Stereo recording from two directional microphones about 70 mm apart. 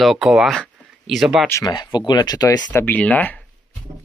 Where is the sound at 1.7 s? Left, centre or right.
Left.